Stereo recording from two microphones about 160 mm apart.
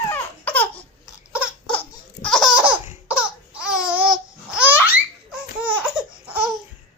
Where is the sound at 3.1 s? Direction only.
5° right (ahead or behind).